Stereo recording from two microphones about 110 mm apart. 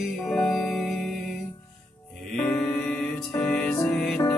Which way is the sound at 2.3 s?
15° left (ahead or behind).